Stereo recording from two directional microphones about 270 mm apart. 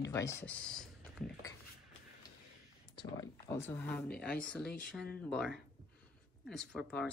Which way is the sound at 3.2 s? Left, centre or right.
Centre.